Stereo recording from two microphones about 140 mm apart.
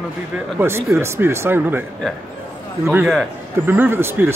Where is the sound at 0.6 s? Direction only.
15° right (ahead or behind).